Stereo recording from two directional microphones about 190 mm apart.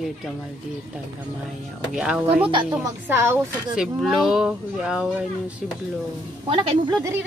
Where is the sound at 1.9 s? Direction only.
5° right (ahead or behind).